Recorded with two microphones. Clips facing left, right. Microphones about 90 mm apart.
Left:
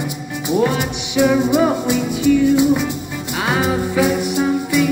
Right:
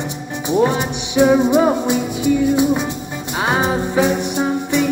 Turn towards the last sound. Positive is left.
turn(degrees=-25)  # may be behind; listen again after turning